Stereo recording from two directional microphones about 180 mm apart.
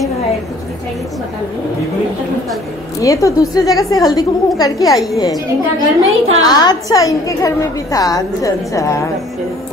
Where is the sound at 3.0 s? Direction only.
15° left (ahead or behind).